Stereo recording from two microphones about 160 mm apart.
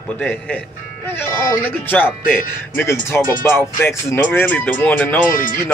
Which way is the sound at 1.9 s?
10° left (ahead or behind).